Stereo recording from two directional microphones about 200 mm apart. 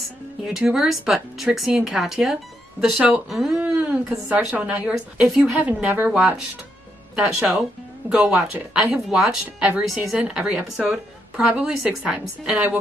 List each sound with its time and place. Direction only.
0.4 s a woman's voice: centre (ahead or behind)